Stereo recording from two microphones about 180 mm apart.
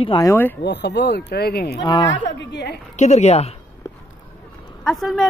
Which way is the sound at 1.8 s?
25° left (ahead or behind).